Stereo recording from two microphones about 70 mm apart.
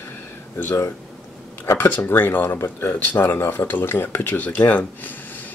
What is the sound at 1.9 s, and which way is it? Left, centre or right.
Speech, left.